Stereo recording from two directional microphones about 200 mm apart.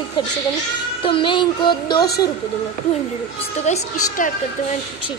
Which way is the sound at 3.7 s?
35° left (ahead or behind).